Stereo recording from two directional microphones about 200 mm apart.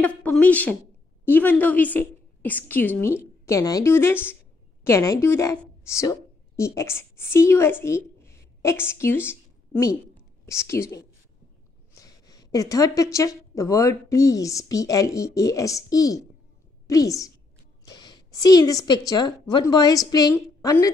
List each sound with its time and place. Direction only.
0.0 s a woman's voice: 5° left (ahead or behind)
12.0 s a woman's voice: 20° left (ahead or behind)